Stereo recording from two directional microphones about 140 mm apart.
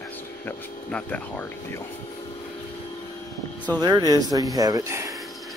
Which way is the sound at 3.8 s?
30° right (ahead or behind).